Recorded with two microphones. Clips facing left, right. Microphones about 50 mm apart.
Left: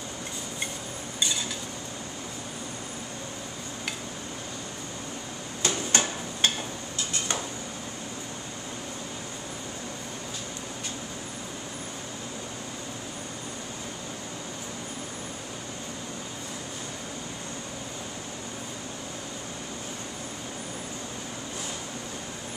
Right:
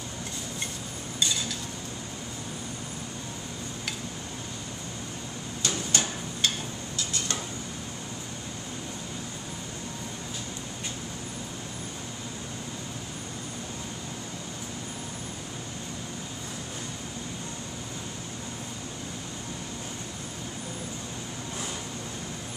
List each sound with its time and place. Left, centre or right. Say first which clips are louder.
5.6 s hammer: left 3 dB; left